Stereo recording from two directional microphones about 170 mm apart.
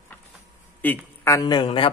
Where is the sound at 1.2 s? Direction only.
20° left (ahead or behind).